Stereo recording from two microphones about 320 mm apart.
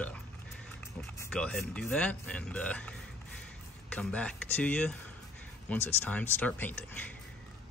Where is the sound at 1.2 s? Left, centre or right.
Centre.